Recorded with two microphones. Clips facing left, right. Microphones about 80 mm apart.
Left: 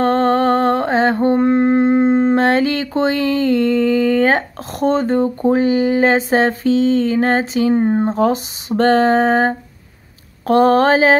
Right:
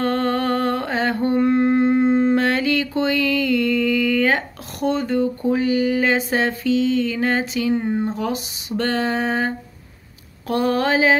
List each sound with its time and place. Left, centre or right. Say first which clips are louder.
0.0 s mantra: left 6 dB; left
10.4 s speech: left 8 dB; left